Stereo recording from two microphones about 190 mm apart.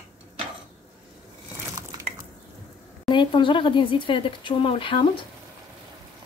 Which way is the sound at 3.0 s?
25° left (ahead or behind).